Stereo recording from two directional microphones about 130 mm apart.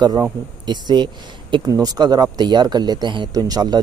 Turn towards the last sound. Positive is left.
turn(degrees=-30)  # may be behind; listen again after turning